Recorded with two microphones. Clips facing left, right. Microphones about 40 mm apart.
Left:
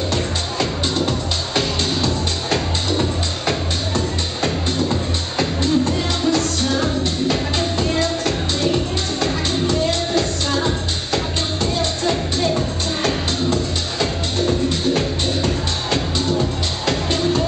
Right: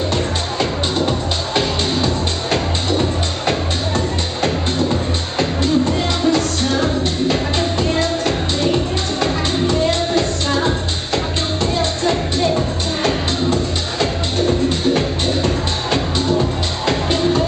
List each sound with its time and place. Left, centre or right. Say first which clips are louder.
0.1 s music: right 2 dB; right
5.6 s music: right 2 dB; centre
12.0 s music: right 3 dB; centre
13.0 s music: right 2 dB; right